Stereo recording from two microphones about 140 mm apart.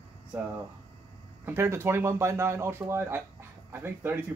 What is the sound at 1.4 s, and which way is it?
Speech, 15° right (ahead or behind).